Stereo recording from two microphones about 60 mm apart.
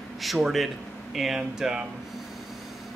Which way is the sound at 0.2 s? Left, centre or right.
Centre.